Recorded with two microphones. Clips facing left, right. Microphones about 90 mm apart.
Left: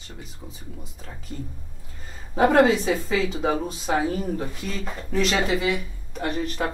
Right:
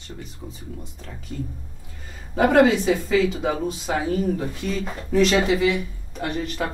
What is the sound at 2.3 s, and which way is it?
Speech, 35° left (ahead or behind).